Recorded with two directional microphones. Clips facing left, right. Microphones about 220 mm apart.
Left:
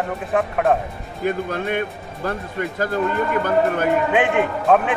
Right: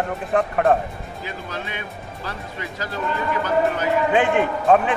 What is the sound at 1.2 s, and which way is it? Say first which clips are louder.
Speech: left 11 dB; 55° left (ahead or behind).